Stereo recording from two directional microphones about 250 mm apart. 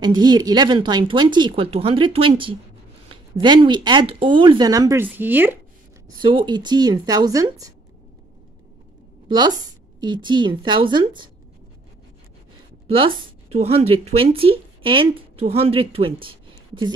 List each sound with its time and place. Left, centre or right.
0.0 s a woman's voice: centre
6.2 s speech: centre
9.9 s speech: centre
12.8 s a woman's voice: right